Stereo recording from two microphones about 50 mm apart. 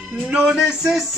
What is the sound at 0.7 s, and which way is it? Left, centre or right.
Music, centre.